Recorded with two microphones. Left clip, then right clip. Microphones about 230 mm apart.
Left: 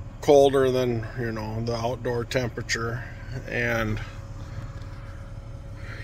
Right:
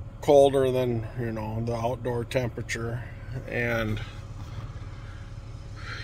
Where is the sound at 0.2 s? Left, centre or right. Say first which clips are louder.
Left 1 dB; centre.